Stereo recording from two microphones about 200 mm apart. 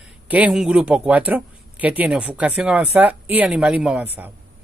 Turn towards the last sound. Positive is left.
turn(degrees=-5)  # may be behind; listen again after turning